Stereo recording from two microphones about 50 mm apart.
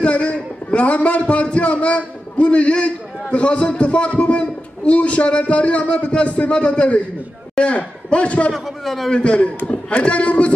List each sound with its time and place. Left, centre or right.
0.0 s a man's voice: left
8.5 s a man's voice: centre
9.1 s a man's voice: left